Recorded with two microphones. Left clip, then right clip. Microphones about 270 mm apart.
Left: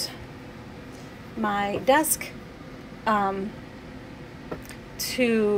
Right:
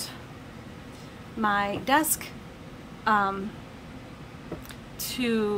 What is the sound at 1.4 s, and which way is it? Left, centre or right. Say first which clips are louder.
A woman's voice: left 2 dB; right.